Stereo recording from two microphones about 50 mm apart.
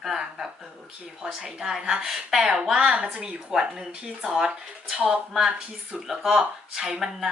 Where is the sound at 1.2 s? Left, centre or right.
Centre.